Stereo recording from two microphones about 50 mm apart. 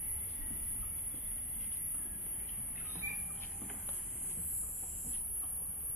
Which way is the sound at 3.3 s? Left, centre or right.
Left.